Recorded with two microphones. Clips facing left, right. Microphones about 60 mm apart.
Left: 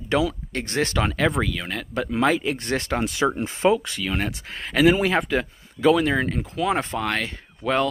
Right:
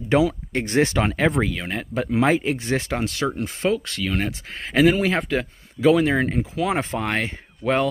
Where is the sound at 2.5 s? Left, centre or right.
Centre.